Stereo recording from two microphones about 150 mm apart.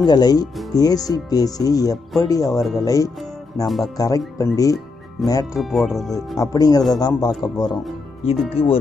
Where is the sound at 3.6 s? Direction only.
Centre (ahead or behind).